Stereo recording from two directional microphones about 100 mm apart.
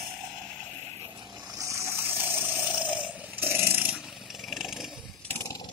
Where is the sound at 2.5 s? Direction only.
15° right (ahead or behind).